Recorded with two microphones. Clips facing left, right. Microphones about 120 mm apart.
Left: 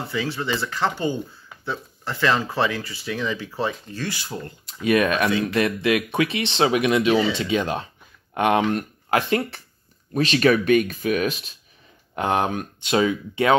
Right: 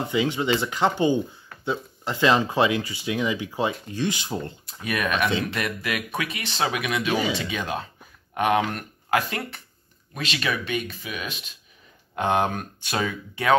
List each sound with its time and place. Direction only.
0.1 s speech: 15° right (ahead or behind)
4.8 s speech: 30° left (ahead or behind)
12.3 s speech: 10° left (ahead or behind)